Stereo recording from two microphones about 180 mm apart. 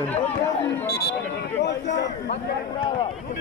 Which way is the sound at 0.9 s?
65° left (ahead or behind).